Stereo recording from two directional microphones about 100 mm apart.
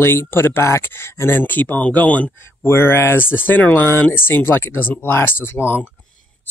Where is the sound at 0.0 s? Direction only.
25° left (ahead or behind).